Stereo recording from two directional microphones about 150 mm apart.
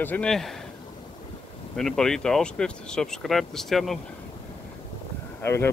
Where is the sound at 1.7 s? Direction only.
5° left (ahead or behind).